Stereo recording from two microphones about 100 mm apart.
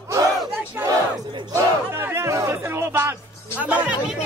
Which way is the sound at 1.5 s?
25° right (ahead or behind).